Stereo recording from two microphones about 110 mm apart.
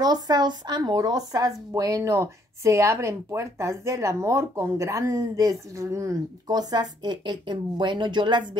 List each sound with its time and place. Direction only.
0.0 s speech: 40° right (ahead or behind)